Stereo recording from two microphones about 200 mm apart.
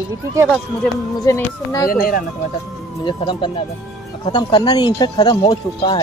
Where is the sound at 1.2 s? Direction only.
15° left (ahead or behind).